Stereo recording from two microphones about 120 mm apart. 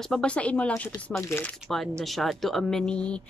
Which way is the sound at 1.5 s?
Centre (ahead or behind).